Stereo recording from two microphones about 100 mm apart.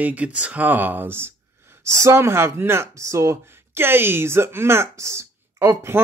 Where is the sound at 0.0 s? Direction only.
15° right (ahead or behind).